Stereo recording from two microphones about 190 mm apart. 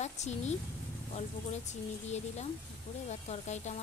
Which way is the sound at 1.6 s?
35° left (ahead or behind).